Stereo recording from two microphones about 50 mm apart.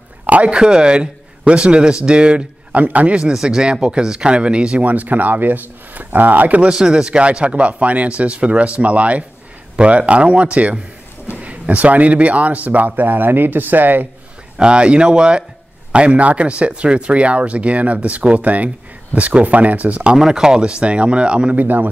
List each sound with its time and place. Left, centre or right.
0.3 s speech: right
0.6 s speech: centre
3.3 s speech: centre; by 6.6 s right
6.6 s speech: centre; by 14.0 s right
14.6 s speech: right
20.2 s speech: centre
21.5 s speech: right